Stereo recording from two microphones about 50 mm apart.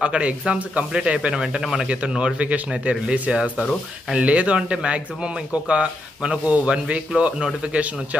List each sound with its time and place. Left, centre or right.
0.0 s speech: right